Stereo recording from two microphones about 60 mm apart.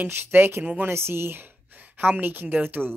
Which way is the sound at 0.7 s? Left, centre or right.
Right.